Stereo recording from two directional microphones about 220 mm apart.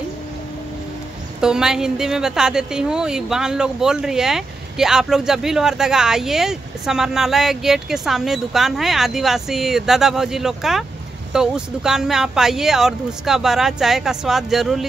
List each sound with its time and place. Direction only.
1.4 s a woman's voice: 5° right (ahead or behind)